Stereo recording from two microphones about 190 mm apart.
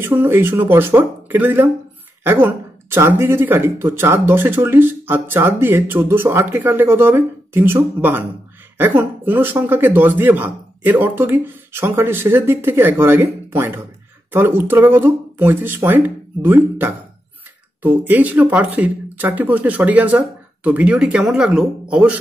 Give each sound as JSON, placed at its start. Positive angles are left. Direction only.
{"t": 0.0, "sound": "speech", "side_deg": -10}